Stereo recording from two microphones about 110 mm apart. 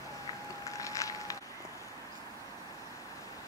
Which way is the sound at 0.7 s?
30° left (ahead or behind).